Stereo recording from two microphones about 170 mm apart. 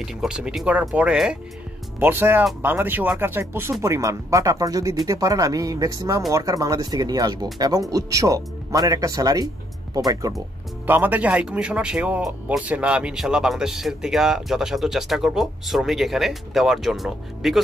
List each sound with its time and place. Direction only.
0.0 s speech: 5° right (ahead or behind); by 10.3 s 20° right (ahead or behind)
10.9 s speech: 10° right (ahead or behind)